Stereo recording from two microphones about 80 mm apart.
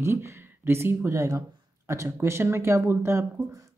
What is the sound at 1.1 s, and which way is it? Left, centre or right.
Speech, right.